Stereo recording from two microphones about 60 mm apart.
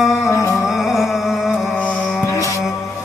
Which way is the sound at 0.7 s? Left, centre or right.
Centre.